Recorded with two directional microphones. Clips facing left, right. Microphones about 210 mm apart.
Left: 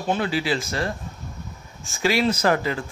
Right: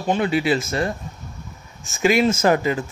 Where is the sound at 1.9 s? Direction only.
20° right (ahead or behind).